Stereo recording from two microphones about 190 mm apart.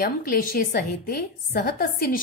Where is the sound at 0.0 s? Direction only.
50° left (ahead or behind).